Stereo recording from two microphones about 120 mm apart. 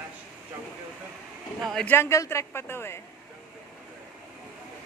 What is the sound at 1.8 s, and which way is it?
A man's voice, 20° left (ahead or behind).